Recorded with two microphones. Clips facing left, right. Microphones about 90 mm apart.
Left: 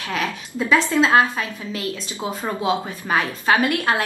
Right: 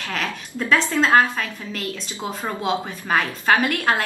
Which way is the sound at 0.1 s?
10° left (ahead or behind).